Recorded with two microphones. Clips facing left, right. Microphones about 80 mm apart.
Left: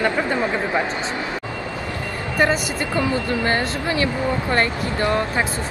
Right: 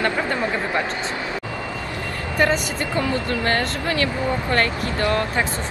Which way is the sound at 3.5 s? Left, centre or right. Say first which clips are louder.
Left 1 dB; centre.